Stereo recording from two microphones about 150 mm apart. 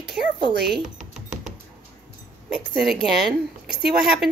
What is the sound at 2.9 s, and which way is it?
A woman's voice, centre (ahead or behind).